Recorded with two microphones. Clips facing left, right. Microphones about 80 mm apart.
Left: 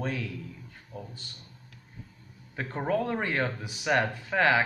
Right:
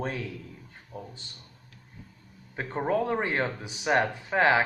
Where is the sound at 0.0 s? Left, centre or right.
Right.